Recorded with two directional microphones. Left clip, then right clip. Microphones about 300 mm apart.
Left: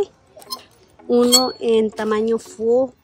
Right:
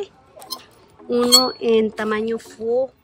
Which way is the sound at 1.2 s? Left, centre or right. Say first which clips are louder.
Right 2 dB; centre.